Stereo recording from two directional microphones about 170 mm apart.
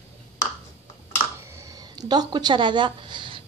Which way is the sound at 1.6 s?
20° right (ahead or behind).